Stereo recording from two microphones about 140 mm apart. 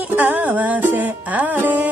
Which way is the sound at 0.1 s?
15° right (ahead or behind).